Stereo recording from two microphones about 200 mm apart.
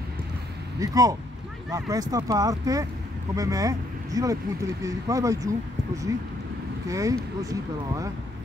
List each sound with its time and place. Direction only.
0.7 s speech: 15° right (ahead or behind)